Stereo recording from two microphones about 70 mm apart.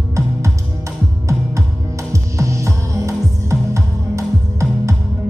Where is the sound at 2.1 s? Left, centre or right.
Right.